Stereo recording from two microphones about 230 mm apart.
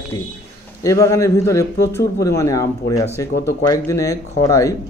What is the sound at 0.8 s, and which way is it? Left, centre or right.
A man's voice, centre.